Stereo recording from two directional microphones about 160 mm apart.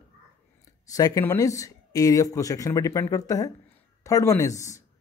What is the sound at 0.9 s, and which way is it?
Speech, 20° left (ahead or behind).